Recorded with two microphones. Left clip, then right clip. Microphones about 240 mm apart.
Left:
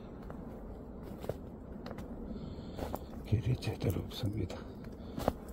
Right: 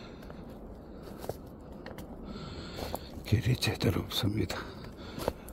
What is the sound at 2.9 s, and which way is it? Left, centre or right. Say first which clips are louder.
Speech: right 4 dB; right.